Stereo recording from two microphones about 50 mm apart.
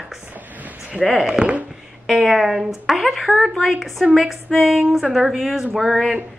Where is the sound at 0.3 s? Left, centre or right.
Right.